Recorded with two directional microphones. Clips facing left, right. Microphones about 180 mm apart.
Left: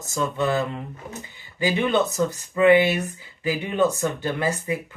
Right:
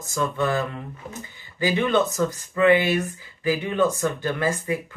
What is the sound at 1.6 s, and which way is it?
Speech, 15° left (ahead or behind).